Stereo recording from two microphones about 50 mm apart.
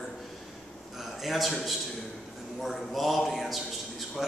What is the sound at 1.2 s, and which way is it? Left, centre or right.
Speech, centre.